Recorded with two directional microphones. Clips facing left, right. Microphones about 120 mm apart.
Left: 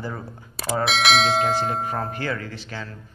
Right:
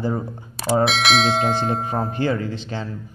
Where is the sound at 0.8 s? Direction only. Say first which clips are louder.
Right 1 dB; centre (ahead or behind).